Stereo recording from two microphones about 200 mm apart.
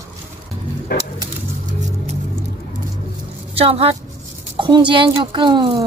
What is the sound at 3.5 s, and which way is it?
A woman's voice, 30° right (ahead or behind).